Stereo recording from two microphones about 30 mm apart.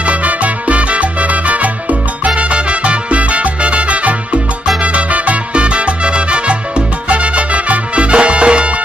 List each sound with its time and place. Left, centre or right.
0.0 s salsa music: right
7.1 s music: right